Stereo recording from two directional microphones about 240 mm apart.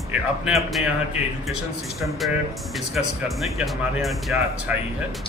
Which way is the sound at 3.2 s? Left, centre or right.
Centre.